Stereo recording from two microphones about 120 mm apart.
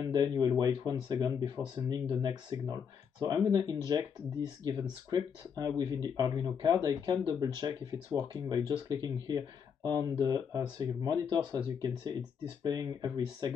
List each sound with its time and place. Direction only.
0.1 s speech: 35° right (ahead or behind)